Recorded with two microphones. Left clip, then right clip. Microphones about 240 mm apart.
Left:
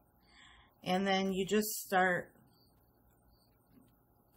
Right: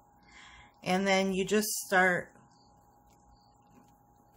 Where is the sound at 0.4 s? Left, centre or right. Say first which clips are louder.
Right 6 dB; centre.